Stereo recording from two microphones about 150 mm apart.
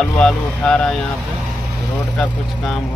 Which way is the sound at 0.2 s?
5° left (ahead or behind).